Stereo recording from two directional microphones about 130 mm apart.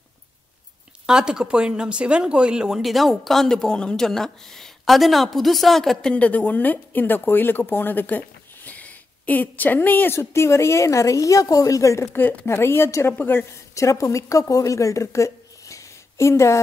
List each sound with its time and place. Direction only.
1.0 s a woman's voice: 5° right (ahead or behind); by 16.5 s 20° left (ahead or behind)